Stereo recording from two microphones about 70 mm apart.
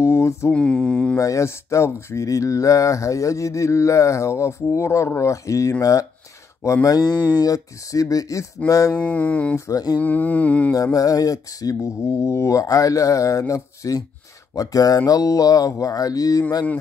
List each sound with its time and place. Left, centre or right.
0.0 s mantra: left
0.5 s mantra: centre
1.1 s speech: left
6.6 s a sound: left
8.6 s speech: left
8.9 s mantra: left
9.7 s a sound: left
9.9 s mantra: left
10.7 s speech: left
14.5 s a sound: left